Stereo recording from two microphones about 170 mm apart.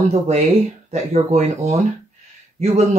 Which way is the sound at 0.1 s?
40° right (ahead or behind).